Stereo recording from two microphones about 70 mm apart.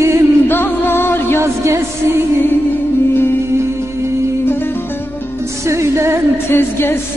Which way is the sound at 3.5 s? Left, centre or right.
Right.